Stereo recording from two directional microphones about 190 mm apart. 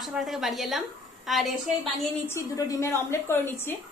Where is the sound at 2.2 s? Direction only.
15° left (ahead or behind).